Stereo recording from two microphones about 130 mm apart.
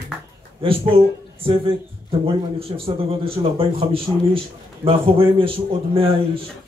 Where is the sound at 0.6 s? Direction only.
45° right (ahead or behind).